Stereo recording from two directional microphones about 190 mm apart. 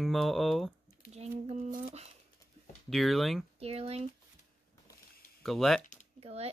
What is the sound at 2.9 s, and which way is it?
Speech, centre (ahead or behind).